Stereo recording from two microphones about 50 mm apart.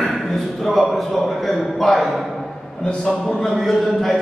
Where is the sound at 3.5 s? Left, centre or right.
Centre.